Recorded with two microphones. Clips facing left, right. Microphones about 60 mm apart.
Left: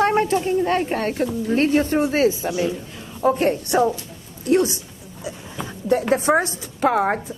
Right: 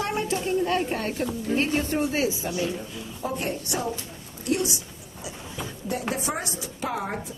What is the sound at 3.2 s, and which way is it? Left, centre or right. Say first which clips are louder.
Speech: left 11 dB; left.